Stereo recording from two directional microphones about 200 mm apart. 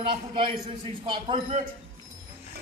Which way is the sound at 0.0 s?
25° right (ahead or behind).